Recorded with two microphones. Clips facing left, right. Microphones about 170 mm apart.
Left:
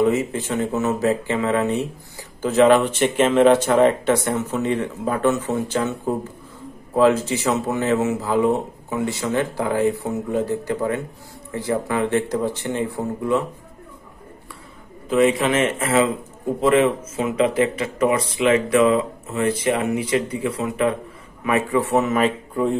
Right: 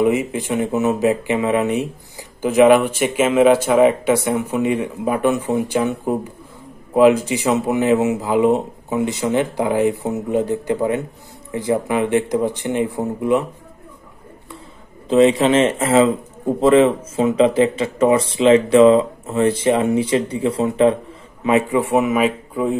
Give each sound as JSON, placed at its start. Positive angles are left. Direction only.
{"t": 0.0, "sound": "speech", "side_deg": -15}
{"t": 15.0, "sound": "speech", "side_deg": -30}
{"t": 21.5, "sound": "speech", "side_deg": -20}